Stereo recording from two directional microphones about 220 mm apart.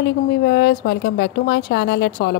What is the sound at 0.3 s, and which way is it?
Speech, 50° left (ahead or behind).